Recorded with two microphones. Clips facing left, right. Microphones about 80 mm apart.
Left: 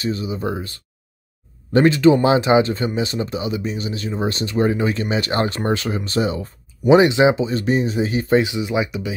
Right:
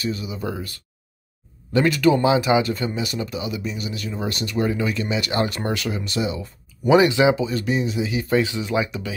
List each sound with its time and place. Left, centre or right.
0.0 s speech: left
2.0 s speech: left
6.9 s speech: left
8.4 s speech: centre